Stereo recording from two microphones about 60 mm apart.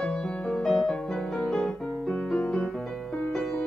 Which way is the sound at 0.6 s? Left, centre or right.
Centre.